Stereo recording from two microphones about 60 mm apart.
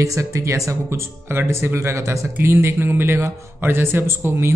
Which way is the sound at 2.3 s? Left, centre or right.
Right.